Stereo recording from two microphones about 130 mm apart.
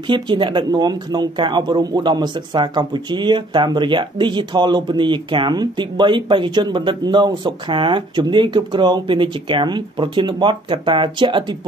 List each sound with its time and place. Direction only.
0.0 s speech: 40° right (ahead or behind)